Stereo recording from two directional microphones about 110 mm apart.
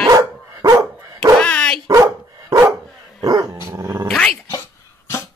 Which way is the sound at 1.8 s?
30° right (ahead or behind).